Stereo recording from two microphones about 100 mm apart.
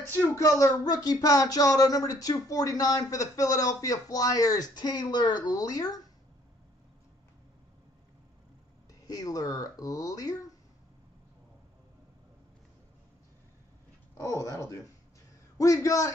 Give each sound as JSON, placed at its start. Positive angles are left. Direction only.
{"t": 0.1, "sound": "speech", "side_deg": 30}
{"t": 9.0, "sound": "speech", "side_deg": 35}
{"t": 14.1, "sound": "a man's voice", "side_deg": 30}